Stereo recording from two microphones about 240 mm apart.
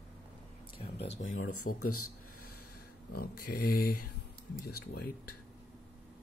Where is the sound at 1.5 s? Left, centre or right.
Left.